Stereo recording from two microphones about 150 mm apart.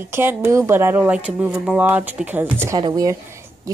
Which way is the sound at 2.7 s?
25° right (ahead or behind).